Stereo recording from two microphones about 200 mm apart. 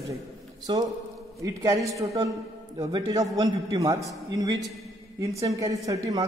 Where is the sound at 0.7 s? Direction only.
25° right (ahead or behind).